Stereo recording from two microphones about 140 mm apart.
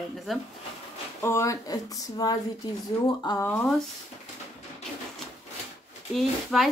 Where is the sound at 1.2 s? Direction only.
20° left (ahead or behind).